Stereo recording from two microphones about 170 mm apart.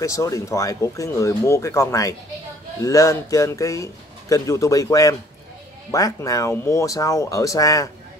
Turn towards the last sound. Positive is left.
turn(degrees=20)  # may be behind; listen again after turning